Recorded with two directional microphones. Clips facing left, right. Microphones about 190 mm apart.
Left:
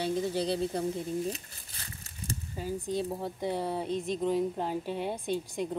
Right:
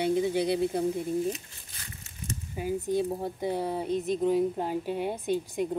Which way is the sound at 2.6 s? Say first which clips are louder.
Right 5 dB; 15° right (ahead or behind).